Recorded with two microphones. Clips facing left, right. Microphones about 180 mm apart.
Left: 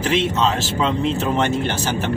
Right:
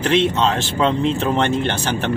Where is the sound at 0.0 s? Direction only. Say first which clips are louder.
Right 2 dB; 5° left (ahead or behind).